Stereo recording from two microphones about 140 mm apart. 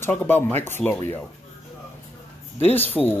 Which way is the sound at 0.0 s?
10° left (ahead or behind).